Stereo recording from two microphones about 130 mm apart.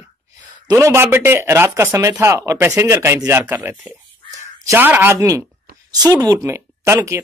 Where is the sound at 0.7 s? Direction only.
20° right (ahead or behind).